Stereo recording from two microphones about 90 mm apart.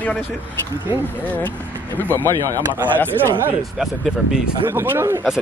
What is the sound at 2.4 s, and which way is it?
Speech, 40° right (ahead or behind).